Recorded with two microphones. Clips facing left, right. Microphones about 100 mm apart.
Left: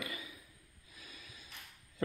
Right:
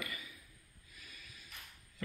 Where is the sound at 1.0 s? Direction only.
25° left (ahead or behind).